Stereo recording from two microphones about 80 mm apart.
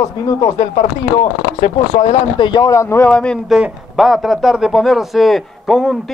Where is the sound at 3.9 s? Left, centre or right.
Centre.